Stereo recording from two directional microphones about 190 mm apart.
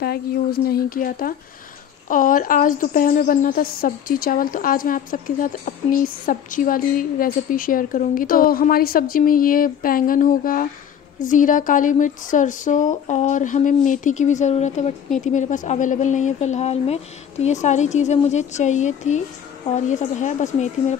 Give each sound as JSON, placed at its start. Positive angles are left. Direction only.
{"t": 0.0, "sound": "speech", "side_deg": 55}